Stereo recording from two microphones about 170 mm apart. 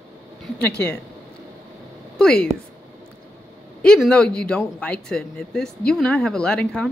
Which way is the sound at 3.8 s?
5° left (ahead or behind).